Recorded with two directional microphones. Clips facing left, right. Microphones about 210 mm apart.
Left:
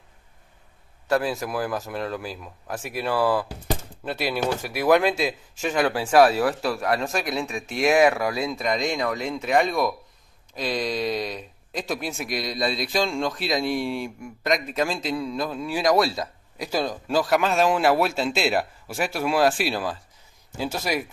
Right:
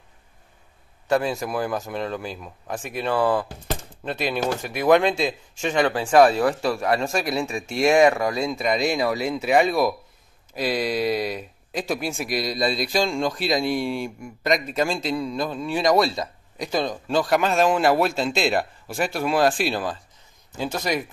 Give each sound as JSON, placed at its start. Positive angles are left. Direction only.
{"t": 1.0, "sound": "speech", "side_deg": 0}